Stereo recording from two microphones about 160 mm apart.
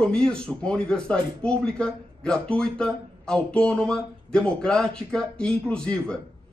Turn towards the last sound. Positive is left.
turn(degrees=5)  # may be behind; listen again after turning